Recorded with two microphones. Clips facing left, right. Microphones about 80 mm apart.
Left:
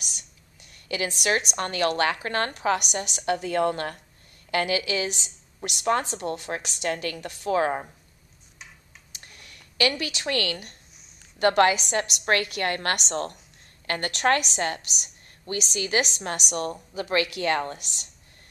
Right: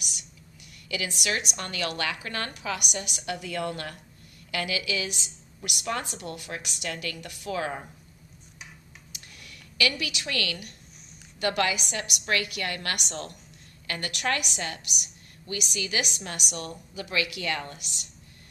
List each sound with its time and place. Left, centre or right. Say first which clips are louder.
0.8 s a woman's voice: left 5 dB; left
9.3 s a woman's voice: right 1 dB; left